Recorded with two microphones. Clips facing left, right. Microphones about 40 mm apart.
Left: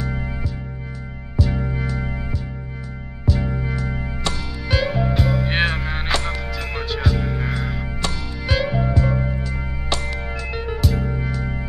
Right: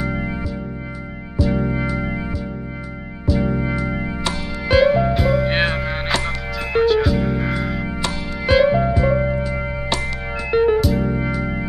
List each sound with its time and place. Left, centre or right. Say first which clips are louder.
0.0 s music: right 4 dB; centre
1.3 s music: right 4 dB; centre
3.3 s music: right 4 dB; centre
3.5 s organ: right 4 dB; centre
4.6 s music: right 8 dB; centre
10.8 s music: right 5 dB; centre
11.1 s music: right 4 dB; centre